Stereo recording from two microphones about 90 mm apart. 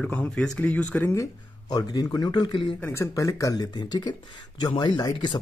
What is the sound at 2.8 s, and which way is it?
Speech, 20° left (ahead or behind).